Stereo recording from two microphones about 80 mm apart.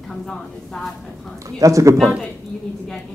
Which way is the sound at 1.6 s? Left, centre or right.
Right.